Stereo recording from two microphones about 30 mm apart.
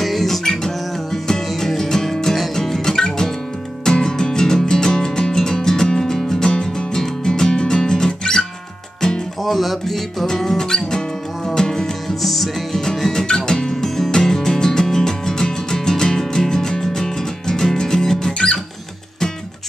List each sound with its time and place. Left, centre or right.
0.0 s music: centre
0.4 s music: centre
9.4 s music: centre
10.2 s music: centre
12.2 s music: centre
13.4 s music: left